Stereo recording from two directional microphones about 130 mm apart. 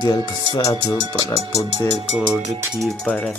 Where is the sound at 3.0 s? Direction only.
5° left (ahead or behind).